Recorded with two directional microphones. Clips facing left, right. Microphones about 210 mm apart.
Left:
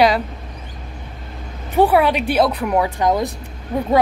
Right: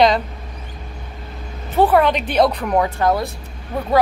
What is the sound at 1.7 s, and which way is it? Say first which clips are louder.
Speech: even; 10° left (ahead or behind).